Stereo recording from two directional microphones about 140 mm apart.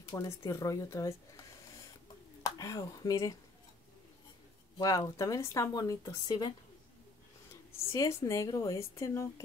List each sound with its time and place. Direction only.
0.1 s a woman's voice: 25° left (ahead or behind)
2.4 s speech: 25° left (ahead or behind)
4.7 s a woman's voice: 25° left (ahead or behind)
7.9 s a woman's voice: 20° left (ahead or behind)